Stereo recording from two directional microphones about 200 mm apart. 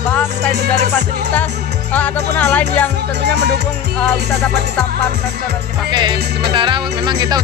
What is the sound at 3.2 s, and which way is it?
Speech, 55° right (ahead or behind).